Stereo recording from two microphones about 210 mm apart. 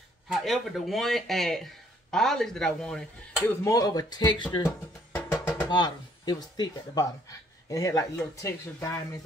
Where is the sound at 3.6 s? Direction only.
15° left (ahead or behind).